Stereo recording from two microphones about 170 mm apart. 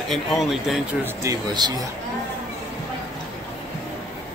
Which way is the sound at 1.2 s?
25° right (ahead or behind).